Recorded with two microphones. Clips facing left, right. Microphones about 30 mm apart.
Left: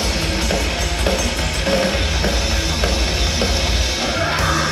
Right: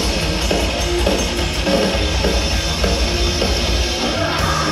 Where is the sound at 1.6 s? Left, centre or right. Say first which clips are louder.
Right 1 dB; centre.